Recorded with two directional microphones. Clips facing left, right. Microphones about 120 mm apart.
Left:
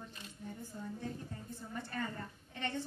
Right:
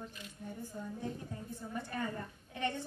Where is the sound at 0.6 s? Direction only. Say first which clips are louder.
Right 2 dB; 15° right (ahead or behind).